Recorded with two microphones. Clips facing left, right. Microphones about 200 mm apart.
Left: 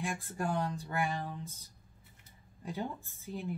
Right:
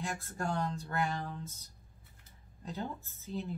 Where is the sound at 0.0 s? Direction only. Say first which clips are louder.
Left 2 dB; 15° left (ahead or behind).